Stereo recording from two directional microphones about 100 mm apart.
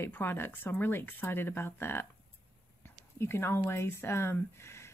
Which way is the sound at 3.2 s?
25° left (ahead or behind).